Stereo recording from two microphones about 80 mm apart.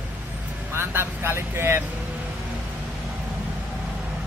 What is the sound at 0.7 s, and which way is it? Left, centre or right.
Speech, right.